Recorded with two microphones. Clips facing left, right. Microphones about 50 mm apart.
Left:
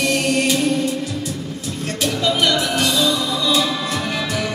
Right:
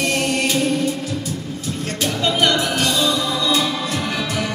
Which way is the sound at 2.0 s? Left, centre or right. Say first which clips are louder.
Even; right.